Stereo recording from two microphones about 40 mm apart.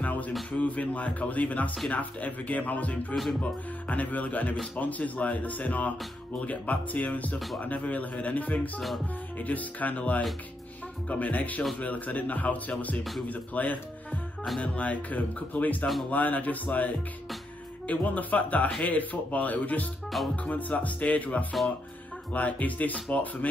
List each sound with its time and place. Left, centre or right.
0.0 s a sound: left
0.5 s speech: left
7.3 s speech: centre
7.6 s speech: left